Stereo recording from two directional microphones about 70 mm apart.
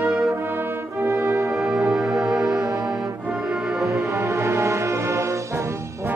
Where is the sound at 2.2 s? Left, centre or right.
Right.